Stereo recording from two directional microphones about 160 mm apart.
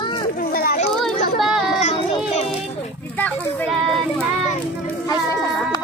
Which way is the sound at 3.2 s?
10° left (ahead or behind).